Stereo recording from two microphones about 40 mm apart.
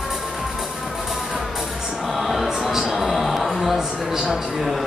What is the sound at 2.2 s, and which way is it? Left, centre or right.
Music, centre.